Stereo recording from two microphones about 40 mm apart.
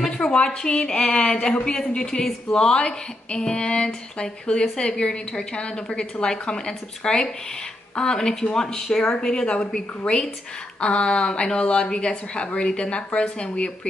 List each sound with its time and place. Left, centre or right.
0.1 s a sound: left
0.6 s a woman's voice: centre
1.0 s speech: left
1.6 s a woman's voice: centre